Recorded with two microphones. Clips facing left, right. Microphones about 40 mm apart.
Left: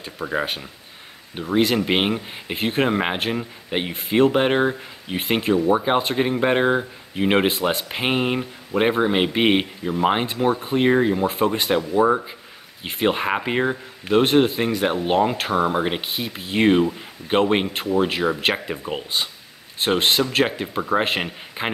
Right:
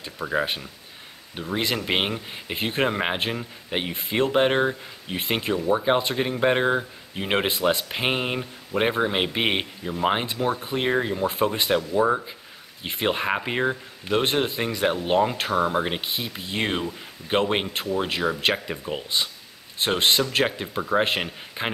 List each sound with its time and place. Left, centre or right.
0.0 s speech: centre
17.6 s speech: centre